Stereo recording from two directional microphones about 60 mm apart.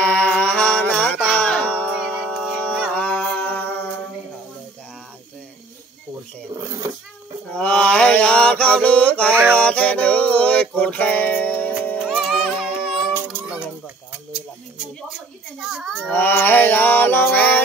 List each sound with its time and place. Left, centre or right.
0.0 s music: centre
2.0 s a sound: centre
3.1 s music: left
6.5 s a sound: right
7.4 s mantra: centre
9.3 s a sound: right
9.6 s music: left
12.2 s music: centre
13.1 s child singing: right
15.6 s baby cry: centre
16.1 s music: left